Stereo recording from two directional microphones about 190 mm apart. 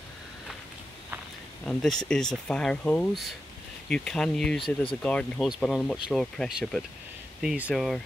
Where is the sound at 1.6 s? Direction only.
5° left (ahead or behind).